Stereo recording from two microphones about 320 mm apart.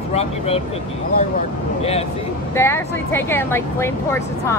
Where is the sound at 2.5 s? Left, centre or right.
Centre.